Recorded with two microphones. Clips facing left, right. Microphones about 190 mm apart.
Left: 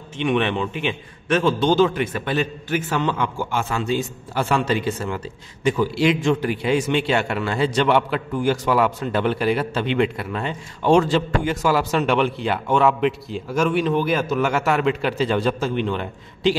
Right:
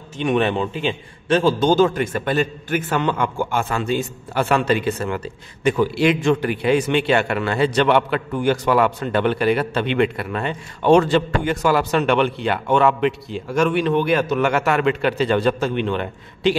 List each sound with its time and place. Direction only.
0.2 s a man's voice: 40° right (ahead or behind); by 8.2 s 60° right (ahead or behind)
8.7 s a man's voice: centre (ahead or behind)
9.5 s a man's voice: 60° right (ahead or behind)
11.1 s a man's voice: centre (ahead or behind)
15.6 s a man's voice: 60° right (ahead or behind)